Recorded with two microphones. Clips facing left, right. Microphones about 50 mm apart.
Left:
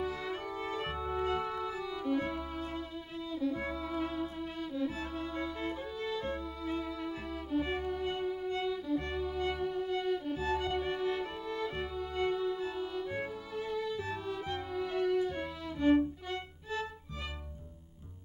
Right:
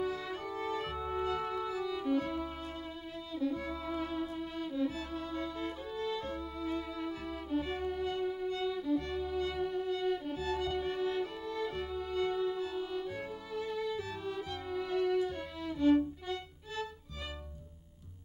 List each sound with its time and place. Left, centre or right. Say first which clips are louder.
0.1 s music: left 1 dB; left
4.9 s music: left 1 dB; left
7.6 s violin: left 1 dB; left
11.7 s music: right 1 dB; left
14.0 s violin: left 2 dB; left